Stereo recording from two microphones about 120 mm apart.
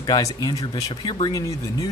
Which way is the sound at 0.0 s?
35° left (ahead or behind).